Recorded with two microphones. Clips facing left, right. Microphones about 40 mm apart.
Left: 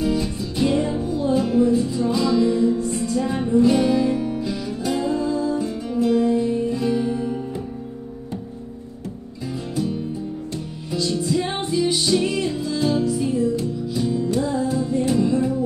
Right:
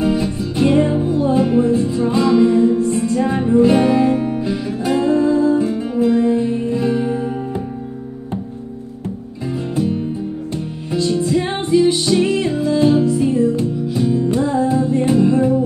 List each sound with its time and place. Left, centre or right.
0.0 s music: right
9.8 s music: right